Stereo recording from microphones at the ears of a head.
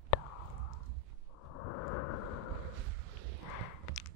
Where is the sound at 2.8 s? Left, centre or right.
Right.